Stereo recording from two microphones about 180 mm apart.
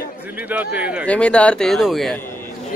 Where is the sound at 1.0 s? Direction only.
5° left (ahead or behind).